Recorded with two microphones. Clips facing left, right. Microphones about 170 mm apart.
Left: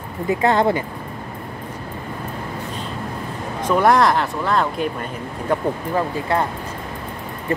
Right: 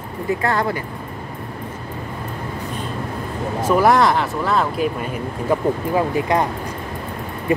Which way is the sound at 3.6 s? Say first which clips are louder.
Right 1 dB; 5° right (ahead or behind).